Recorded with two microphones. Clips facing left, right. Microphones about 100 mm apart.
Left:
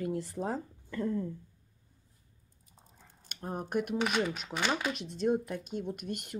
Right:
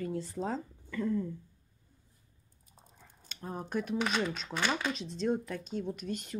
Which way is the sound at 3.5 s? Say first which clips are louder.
Left 2 dB; 15° left (ahead or behind).